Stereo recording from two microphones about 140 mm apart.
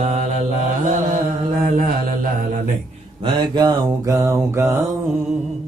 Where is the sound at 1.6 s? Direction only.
85° right.